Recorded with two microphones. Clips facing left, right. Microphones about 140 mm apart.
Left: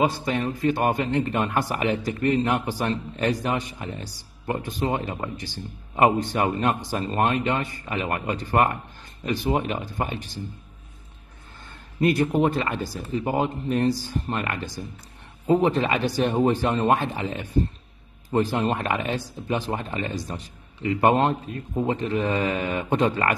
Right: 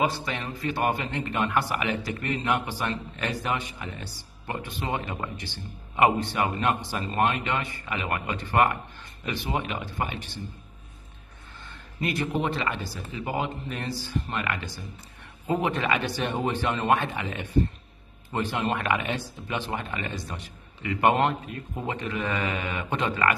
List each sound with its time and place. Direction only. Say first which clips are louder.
0.1 s speech: left 7 dB; 50° left (ahead or behind)
12.0 s speech: left 7 dB; 50° left (ahead or behind)